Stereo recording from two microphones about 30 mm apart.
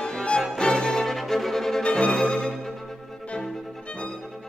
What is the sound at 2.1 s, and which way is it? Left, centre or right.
Music, centre.